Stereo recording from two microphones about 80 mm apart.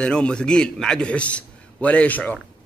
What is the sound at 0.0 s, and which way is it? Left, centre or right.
A man's voice, centre.